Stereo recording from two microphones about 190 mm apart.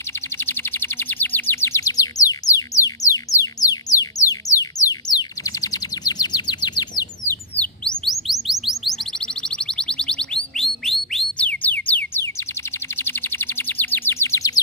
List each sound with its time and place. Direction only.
0.4 s bird: 10° left (ahead or behind)
7.5 s chirp: 5° left (ahead or behind)
12.9 s a sound: 10° left (ahead or behind)